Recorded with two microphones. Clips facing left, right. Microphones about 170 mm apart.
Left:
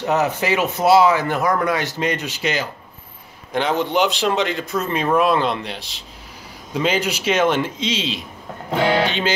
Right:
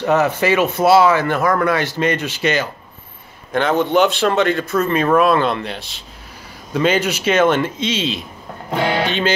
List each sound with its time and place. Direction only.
0.0 s speech: 15° left (ahead or behind)
3.8 s speech: 15° left (ahead or behind)
7.3 s a man's voice: 55° right (ahead or behind)
8.6 s speech: 15° right (ahead or behind)